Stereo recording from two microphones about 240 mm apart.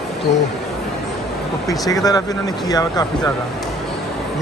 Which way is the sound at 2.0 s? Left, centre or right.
Centre.